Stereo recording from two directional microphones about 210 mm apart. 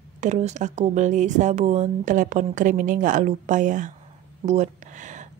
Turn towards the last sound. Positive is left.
turn(degrees=-35)  # may be behind; listen again after turning